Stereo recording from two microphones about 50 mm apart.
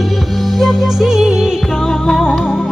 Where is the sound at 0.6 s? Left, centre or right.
Centre.